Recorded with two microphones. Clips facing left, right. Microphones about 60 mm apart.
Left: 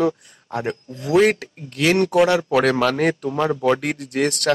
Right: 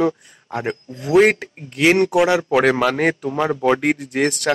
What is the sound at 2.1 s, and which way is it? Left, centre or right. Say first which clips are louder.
Speech: even; centre.